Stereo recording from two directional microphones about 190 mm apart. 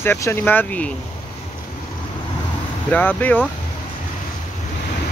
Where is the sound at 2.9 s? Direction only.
10° left (ahead or behind).